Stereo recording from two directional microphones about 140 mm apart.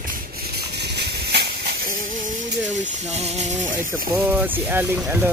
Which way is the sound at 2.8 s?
50° right (ahead or behind).